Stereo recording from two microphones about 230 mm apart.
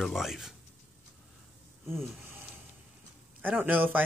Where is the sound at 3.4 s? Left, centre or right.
Centre.